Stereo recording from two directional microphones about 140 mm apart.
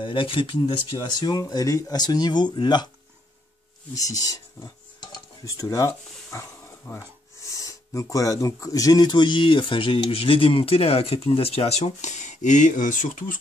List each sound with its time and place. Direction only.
0.0 s speech: 35° left (ahead or behind)
3.9 s speech: 25° left (ahead or behind); by 13.4 s 65° left (ahead or behind)